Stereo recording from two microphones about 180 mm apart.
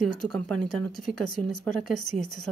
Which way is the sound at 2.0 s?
45° left (ahead or behind).